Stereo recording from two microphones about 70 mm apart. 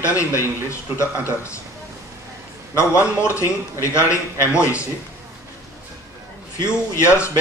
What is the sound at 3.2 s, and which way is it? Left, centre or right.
A man's voice, left.